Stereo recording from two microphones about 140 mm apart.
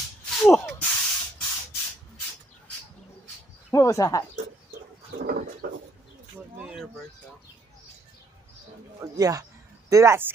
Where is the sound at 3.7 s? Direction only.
20° left (ahead or behind).